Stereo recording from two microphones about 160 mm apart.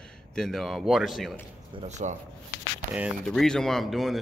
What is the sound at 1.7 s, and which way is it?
Speech, 45° right (ahead or behind).